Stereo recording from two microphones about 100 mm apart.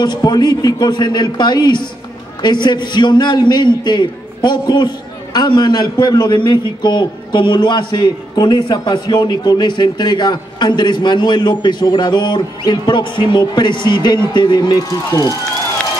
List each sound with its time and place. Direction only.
0.0 s a man's voice: 45° left (ahead or behind)